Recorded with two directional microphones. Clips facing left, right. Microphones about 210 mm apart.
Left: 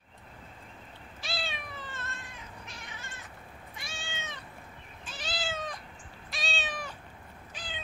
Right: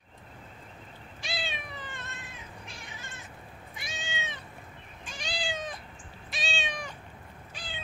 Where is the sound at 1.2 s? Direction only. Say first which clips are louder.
Right 1 dB; centre (ahead or behind).